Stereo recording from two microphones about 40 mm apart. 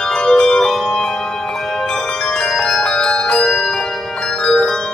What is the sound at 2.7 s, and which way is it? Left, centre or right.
Bell, centre.